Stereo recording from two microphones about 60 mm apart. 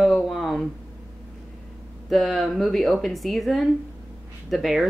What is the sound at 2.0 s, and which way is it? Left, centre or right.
A woman's voice, centre.